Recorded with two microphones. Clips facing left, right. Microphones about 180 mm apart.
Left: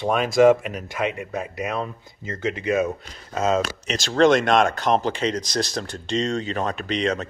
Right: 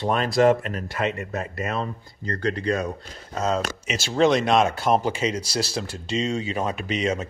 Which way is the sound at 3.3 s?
90° left.